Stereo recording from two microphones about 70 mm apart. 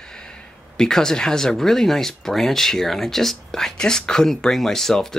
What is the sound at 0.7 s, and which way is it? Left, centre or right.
Speech, centre.